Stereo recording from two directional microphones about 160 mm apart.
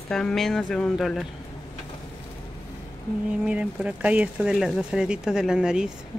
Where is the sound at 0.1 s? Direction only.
5° left (ahead or behind).